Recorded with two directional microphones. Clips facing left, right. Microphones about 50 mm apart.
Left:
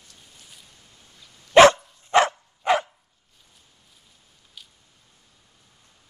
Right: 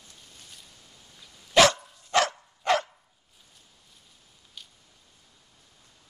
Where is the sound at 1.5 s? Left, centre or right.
Left.